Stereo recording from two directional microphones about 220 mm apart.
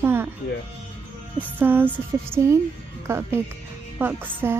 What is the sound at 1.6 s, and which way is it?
A woman's voice, 10° right (ahead or behind).